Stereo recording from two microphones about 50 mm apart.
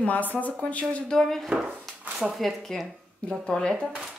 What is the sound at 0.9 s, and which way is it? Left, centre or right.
Speech, centre.